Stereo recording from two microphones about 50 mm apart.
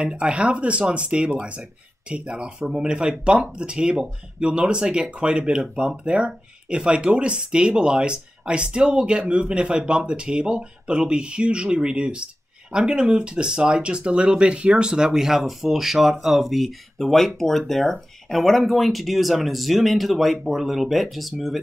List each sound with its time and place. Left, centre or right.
0.0 s speech: right; by 21.5 s centre